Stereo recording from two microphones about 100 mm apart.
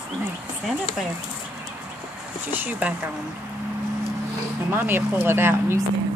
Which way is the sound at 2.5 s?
20° right (ahead or behind).